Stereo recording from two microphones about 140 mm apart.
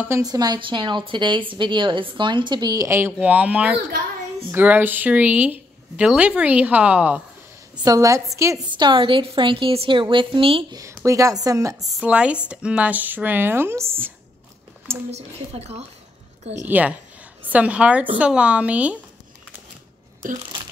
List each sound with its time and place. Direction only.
0.2 s a woman's voice: 25° right (ahead or behind)
3.2 s a woman's voice: 10° right (ahead or behind)
7.8 s a woman's voice: 25° right (ahead or behind)
11.1 s speech: 20° right (ahead or behind)
11.9 s a woman's voice: 10° right (ahead or behind)
15.0 s speech: 50° right (ahead or behind)
16.6 s a woman's voice: 10° right (ahead or behind)